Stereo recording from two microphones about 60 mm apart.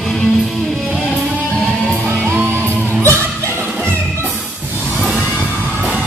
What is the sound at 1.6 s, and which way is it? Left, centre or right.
Music, centre.